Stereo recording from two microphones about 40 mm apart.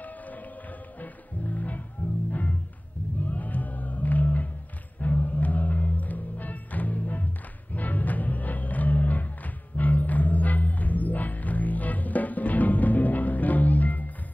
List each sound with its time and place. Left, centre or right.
0.0 s music: left
3.2 s music: left